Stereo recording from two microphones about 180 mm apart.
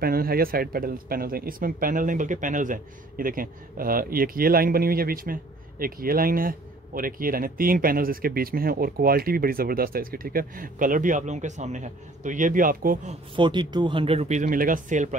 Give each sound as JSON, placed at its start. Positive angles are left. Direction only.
{"t": 0.0, "sound": "speech", "side_deg": -55}
{"t": 13.4, "sound": "speech", "side_deg": -25}